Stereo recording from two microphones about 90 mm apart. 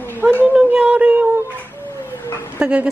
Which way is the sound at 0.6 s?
10° right (ahead or behind).